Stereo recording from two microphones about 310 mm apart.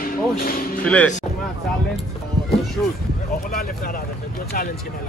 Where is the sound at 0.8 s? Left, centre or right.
Centre.